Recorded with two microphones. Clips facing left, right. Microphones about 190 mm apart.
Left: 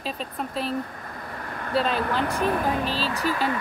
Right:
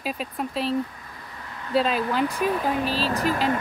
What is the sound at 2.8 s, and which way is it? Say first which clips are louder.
Speech: right 2 dB; 40° right (ahead or behind).